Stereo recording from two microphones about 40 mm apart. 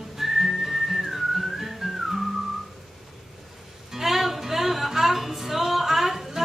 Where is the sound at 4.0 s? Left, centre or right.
Centre.